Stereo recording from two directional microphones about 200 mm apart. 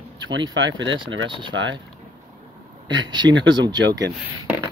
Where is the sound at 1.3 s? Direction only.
25° right (ahead or behind).